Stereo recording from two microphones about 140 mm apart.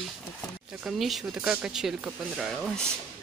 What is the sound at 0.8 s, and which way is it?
Speech, centre (ahead or behind).